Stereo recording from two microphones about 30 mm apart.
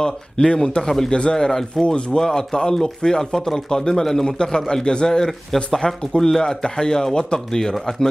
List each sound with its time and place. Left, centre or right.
0.0 s speech: left
1.1 s speech: left
1.8 s speech: centre
2.1 s speech: left